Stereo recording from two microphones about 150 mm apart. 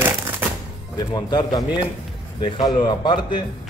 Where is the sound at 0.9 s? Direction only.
25° left (ahead or behind).